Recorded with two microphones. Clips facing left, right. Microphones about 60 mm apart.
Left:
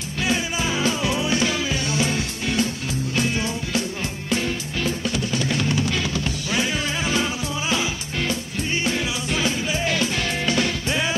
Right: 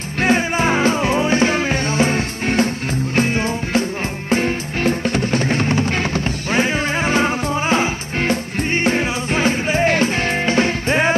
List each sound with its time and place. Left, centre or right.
0.2 s music: right